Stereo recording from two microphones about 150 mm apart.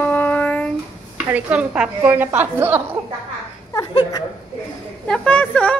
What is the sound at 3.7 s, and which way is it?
Speech, 30° left (ahead or behind).